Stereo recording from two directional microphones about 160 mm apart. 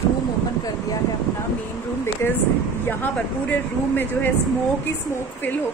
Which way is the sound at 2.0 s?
15° left (ahead or behind).